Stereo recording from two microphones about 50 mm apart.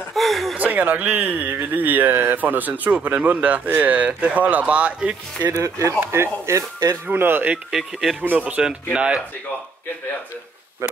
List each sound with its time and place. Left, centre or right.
0.1 s a sound: centre
0.6 s speech: right
5.5 s speech: right
5.9 s speech: right
7.1 s speech: right
7.7 s speech: centre
8.2 s speech: right